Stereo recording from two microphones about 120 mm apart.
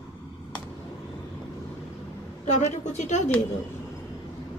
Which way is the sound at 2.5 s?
75° left (ahead or behind).